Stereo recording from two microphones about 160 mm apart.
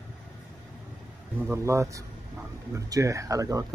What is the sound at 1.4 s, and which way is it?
Speech, 20° right (ahead or behind).